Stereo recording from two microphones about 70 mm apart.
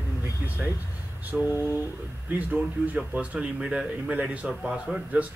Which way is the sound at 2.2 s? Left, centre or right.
Right.